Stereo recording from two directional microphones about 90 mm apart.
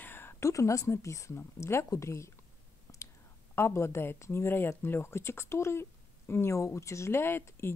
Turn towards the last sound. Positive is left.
turn(degrees=25)  # may be behind; listen again after turning